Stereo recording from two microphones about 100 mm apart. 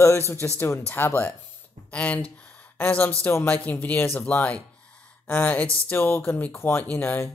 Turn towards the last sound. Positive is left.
turn(degrees=20)  # may be behind; listen again after turning